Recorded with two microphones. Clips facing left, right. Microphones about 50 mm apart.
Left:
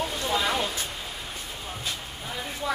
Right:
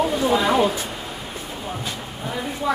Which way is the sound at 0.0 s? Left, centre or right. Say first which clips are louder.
Right 8 dB; centre.